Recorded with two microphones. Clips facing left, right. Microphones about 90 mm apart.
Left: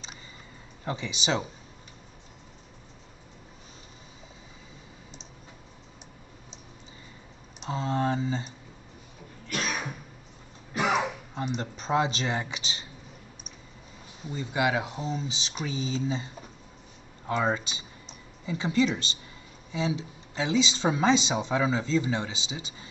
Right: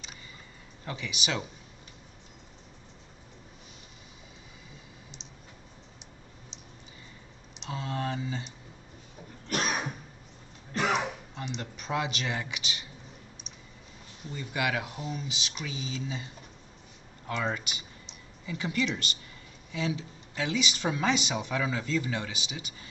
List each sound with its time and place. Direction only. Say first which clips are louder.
0.8 s speech: left 5 dB; 30° left (ahead or behind)
7.7 s speech: left 6 dB; 30° left (ahead or behind)
10.7 s throat clearing: left 2 dB; 10° left (ahead or behind)
11.4 s speech: left 5 dB; 35° left (ahead or behind)
14.2 s speech: left 4 dB; 25° left (ahead or behind)
17.3 s speech: left 5 dB; 30° left (ahead or behind)